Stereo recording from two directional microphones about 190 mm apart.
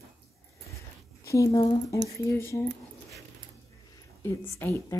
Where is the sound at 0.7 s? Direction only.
15° left (ahead or behind).